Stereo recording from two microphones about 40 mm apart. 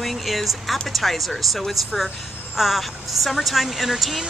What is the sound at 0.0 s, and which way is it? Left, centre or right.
A woman's voice, centre.